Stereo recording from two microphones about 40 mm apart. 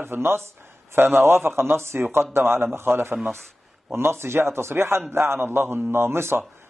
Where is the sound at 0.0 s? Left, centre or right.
Right.